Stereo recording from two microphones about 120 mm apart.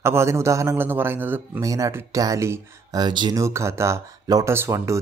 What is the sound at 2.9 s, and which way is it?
Speech, 40° right (ahead or behind).